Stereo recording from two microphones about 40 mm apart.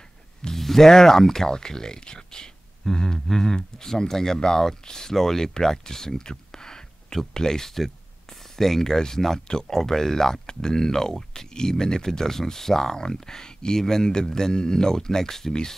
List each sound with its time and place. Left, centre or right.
0.6 s speech: centre